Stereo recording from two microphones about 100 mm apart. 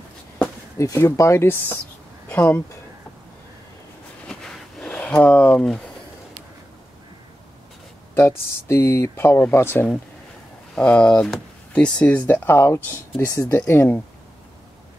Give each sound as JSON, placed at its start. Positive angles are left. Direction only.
{"t": 0.7, "sound": "speech", "side_deg": 30}
{"t": 4.3, "sound": "a sound", "side_deg": 5}
{"t": 4.8, "sound": "speech", "side_deg": 15}
{"t": 8.1, "sound": "speech", "side_deg": 25}
{"t": 10.7, "sound": "speech", "side_deg": 10}